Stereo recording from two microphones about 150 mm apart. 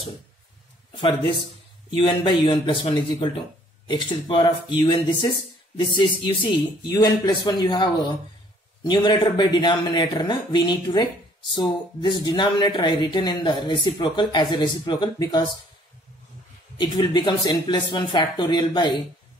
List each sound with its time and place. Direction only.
0.9 s speech: 35° left (ahead or behind)
16.7 s speech: 30° left (ahead or behind)